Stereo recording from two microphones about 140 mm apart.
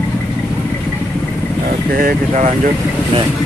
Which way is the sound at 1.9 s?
90° right.